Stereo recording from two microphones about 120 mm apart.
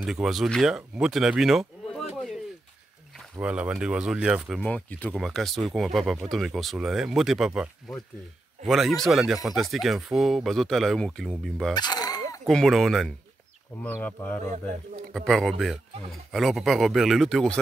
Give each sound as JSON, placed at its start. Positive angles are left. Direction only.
{"t": 0.0, "sound": "speech", "side_deg": 0}
{"t": 3.3, "sound": "speech", "side_deg": -10}
{"t": 4.6, "sound": "speech", "side_deg": 10}
{"t": 5.1, "sound": "speech", "side_deg": 5}
{"t": 11.7, "sound": "dog", "side_deg": 35}
{"t": 12.4, "sound": "speech", "side_deg": 0}
{"t": 13.8, "sound": "speech", "side_deg": 15}
{"t": 15.1, "sound": "speech", "side_deg": 0}